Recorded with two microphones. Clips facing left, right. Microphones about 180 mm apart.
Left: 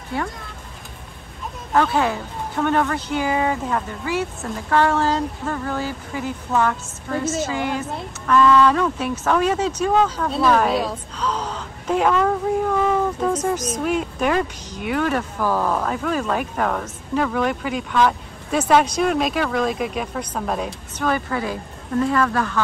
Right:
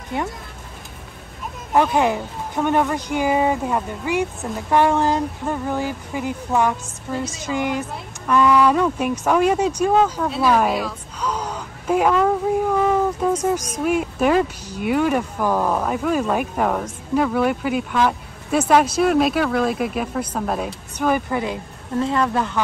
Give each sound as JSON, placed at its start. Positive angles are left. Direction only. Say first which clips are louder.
{"t": 1.7, "sound": "speech", "louder": "right 2 dB", "side_deg": -15}
{"t": 8.3, "sound": "speech", "louder": "even", "side_deg": -15}
{"t": 11.1, "sound": "a sound", "louder": "right 1 dB", "side_deg": -10}
{"t": 13.2, "sound": "speech", "louder": "right 1 dB", "side_deg": -10}